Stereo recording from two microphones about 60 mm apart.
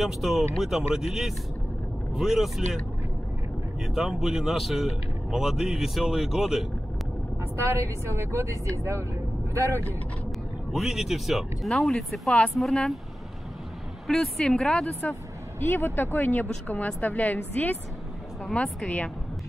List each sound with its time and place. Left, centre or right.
0.0 s speech: centre
3.8 s speech: centre
7.5 s speech: right
10.7 s speech: centre
11.7 s speech: centre
14.0 s speech: centre
15.6 s a woman's voice: left
18.5 s speech: centre